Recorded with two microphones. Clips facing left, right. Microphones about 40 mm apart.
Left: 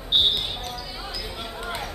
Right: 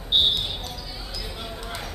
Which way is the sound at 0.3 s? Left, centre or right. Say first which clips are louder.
Even; left.